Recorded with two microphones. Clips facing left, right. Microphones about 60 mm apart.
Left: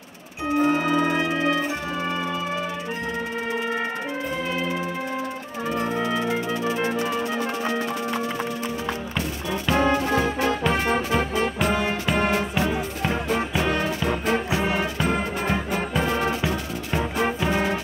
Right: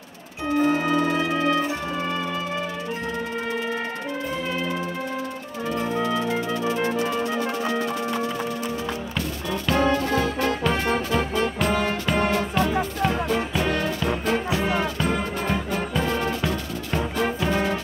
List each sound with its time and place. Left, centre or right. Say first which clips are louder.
0.5 s music: even; centre
5.8 s music: right 1 dB; centre
9.1 s brass instrument: even; centre
10.7 s music: left 1 dB; centre